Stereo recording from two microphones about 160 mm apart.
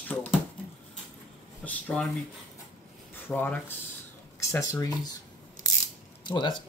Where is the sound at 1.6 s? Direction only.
10° left (ahead or behind).